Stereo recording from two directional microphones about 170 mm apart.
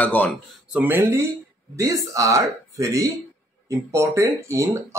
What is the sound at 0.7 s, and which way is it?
Speech, 10° right (ahead or behind).